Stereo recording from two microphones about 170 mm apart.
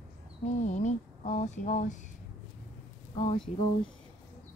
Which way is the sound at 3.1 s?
30° left (ahead or behind).